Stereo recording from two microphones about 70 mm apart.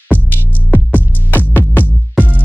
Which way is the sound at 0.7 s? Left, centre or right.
Left.